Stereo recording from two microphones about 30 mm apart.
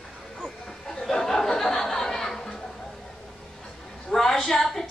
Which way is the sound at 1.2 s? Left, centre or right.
Centre.